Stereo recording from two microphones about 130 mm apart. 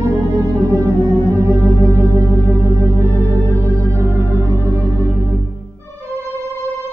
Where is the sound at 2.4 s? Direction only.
20° right (ahead or behind).